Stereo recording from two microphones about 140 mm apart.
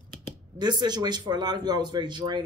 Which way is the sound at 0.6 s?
30° right (ahead or behind).